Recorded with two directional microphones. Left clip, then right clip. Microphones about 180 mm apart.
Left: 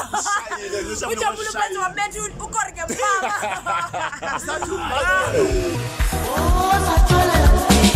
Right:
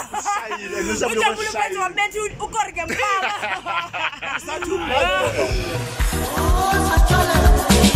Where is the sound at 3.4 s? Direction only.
15° left (ahead or behind).